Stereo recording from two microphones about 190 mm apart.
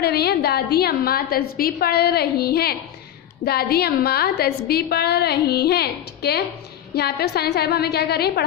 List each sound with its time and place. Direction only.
0.0 s a woman's voice: 55° left (ahead or behind)